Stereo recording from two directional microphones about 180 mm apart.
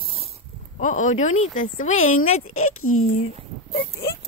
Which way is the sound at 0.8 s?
45° left (ahead or behind).